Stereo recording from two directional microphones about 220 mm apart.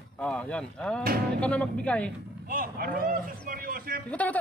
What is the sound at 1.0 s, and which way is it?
Speech, 45° right (ahead or behind).